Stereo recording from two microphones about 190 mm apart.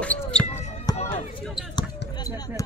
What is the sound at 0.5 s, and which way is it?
Basketball bounce, 35° left (ahead or behind).